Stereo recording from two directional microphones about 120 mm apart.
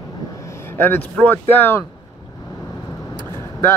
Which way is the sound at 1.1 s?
10° left (ahead or behind).